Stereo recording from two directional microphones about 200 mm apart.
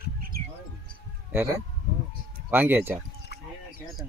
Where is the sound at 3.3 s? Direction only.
55° left (ahead or behind).